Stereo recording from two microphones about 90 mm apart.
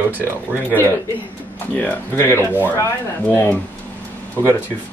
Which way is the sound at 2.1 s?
25° left (ahead or behind).